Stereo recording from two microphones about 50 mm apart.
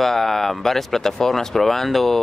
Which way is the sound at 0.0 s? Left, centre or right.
Centre.